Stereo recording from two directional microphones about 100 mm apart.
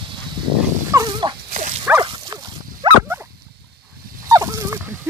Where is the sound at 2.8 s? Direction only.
50° right (ahead or behind).